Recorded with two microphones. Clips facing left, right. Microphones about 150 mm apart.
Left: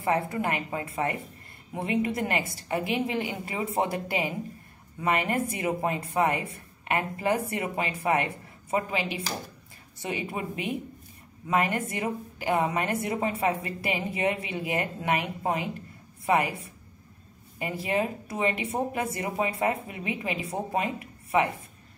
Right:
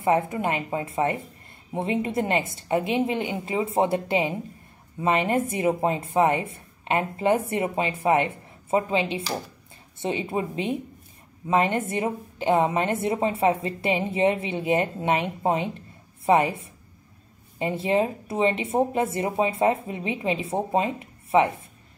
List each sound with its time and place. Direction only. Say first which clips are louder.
0.0 s a woman's voice: right 4 dB; 20° right (ahead or behind)